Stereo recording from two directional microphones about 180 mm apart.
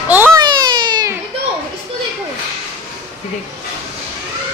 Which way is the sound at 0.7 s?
25° right (ahead or behind).